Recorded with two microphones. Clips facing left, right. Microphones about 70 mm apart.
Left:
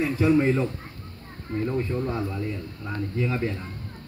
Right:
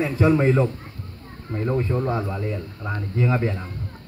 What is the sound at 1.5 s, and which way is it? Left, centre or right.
Speech, centre.